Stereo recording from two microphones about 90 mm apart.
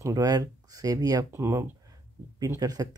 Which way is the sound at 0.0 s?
40° right (ahead or behind).